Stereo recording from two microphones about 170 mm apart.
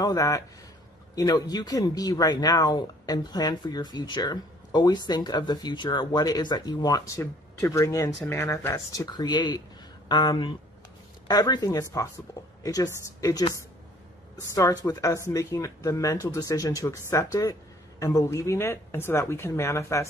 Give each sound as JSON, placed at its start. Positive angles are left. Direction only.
{"t": 0.0, "sound": "speech", "side_deg": 20}